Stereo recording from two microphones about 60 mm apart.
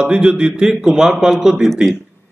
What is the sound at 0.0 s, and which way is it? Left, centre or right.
A man's voice, centre.